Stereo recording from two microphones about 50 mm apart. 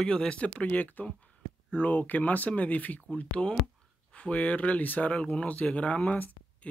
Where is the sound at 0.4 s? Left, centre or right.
Left.